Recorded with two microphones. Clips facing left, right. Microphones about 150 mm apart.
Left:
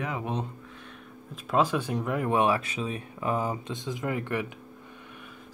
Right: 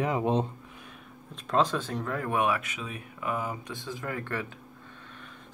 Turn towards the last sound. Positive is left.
turn(degrees=20)  # may be behind; listen again after turning